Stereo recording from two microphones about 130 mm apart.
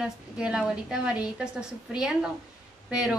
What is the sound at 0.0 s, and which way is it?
A woman's voice, 5° right (ahead or behind).